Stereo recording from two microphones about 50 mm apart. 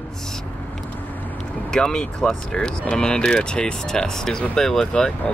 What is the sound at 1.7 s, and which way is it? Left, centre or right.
Speech, centre.